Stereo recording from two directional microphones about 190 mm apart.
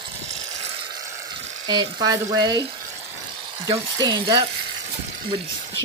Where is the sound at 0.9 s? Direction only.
15° right (ahead or behind).